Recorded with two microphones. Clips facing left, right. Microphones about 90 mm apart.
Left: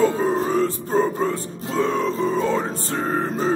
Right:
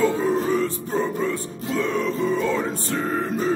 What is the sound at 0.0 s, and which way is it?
Music, 35° left (ahead or behind).